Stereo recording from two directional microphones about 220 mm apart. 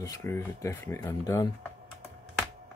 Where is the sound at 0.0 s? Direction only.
15° left (ahead or behind).